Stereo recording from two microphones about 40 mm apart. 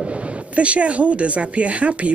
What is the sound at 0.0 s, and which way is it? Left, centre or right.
Speech, right.